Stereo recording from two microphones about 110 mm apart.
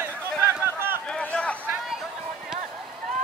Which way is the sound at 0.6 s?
20° right (ahead or behind).